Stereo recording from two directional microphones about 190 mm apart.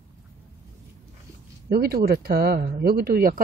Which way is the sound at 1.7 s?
55° right (ahead or behind).